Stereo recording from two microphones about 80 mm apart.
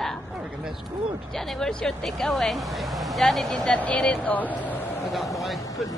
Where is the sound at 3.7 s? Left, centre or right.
Centre.